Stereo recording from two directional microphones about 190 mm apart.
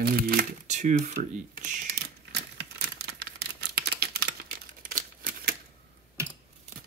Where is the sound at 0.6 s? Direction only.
40° right (ahead or behind).